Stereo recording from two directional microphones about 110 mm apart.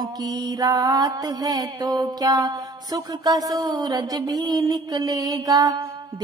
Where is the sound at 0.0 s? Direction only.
35° right (ahead or behind).